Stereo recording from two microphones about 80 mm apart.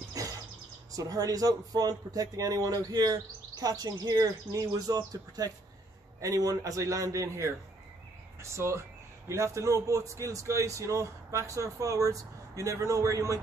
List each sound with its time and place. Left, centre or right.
0.2 s bird: right
0.9 s a man's voice: right